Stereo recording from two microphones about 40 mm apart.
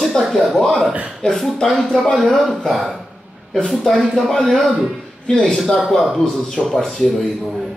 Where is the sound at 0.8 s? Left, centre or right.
Right.